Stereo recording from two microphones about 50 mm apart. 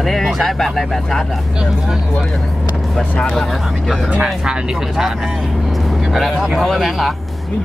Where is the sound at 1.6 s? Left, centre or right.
Centre.